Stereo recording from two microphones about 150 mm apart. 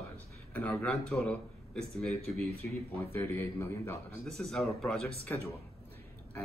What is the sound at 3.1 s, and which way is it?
Speech, 15° left (ahead or behind).